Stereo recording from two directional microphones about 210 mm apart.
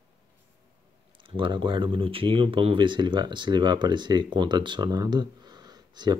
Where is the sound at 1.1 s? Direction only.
25° right (ahead or behind).